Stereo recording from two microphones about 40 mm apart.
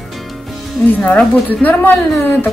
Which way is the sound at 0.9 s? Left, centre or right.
Left.